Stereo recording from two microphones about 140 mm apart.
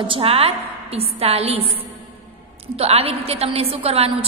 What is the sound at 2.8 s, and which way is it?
A woman's voice, 45° right (ahead or behind).